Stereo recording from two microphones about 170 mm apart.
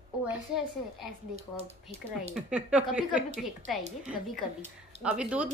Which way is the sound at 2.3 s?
5° right (ahead or behind).